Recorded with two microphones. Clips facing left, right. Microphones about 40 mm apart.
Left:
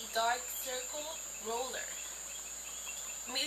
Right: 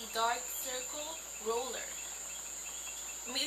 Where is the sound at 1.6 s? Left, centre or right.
Left.